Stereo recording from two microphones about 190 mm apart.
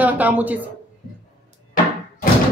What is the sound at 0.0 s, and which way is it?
Speech, 10° right (ahead or behind).